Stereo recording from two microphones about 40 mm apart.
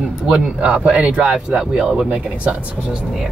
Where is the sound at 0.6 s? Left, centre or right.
Right.